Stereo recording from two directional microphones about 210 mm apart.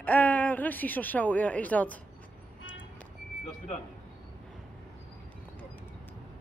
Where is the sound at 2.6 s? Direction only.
65° left (ahead or behind).